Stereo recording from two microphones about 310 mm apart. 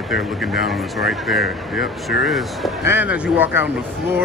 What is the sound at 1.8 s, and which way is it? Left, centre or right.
Speech, left.